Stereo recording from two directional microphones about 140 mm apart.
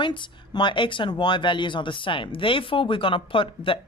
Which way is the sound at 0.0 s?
35° left (ahead or behind).